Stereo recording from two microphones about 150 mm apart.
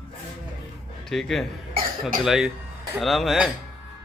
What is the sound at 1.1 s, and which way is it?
Speech, centre (ahead or behind).